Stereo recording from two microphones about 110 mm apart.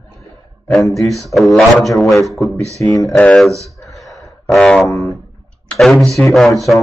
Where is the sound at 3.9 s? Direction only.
Centre (ahead or behind).